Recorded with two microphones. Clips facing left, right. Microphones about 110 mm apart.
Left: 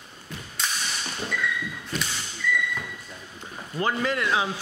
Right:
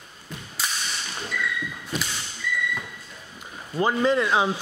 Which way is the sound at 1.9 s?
5° right (ahead or behind).